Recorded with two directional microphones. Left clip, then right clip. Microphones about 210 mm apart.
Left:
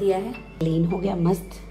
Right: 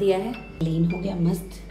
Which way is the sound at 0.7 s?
25° left (ahead or behind).